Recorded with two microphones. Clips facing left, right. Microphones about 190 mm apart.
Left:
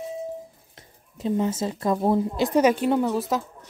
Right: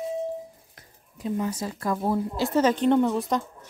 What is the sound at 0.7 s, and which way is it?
A woman's voice, 25° left (ahead or behind).